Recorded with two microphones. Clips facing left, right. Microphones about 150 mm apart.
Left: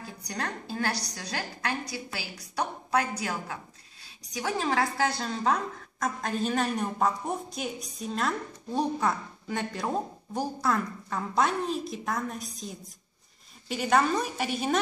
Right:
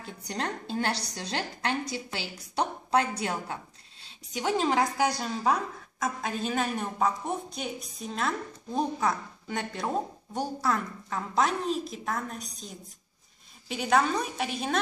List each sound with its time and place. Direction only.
0.0 s a woman's voice: 25° right (ahead or behind); by 12.4 s centre (ahead or behind)
13.7 s a woman's voice: centre (ahead or behind)